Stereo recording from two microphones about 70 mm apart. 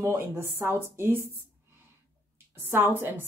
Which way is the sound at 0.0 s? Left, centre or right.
Right.